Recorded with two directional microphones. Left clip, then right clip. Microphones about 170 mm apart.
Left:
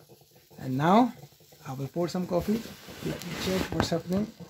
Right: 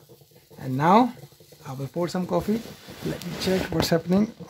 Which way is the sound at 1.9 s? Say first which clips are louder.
Right 3 dB; 15° right (ahead or behind).